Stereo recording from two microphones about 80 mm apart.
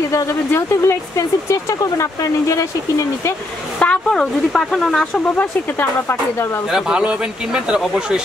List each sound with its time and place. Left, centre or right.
0.5 s speech: left
3.8 s speech: centre
5.3 s speech: left
6.0 s speech: left
6.7 s speech: centre